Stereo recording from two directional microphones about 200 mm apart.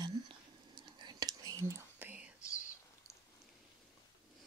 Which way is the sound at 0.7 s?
20° right (ahead or behind).